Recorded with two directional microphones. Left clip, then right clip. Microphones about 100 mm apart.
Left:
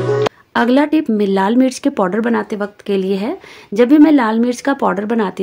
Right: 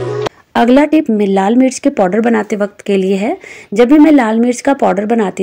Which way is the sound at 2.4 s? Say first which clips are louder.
Right 6 dB; 40° right (ahead or behind).